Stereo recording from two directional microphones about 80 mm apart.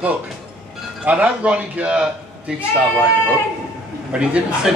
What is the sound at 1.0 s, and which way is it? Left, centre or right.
A man's voice, centre.